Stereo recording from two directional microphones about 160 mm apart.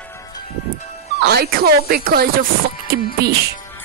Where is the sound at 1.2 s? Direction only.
85° right.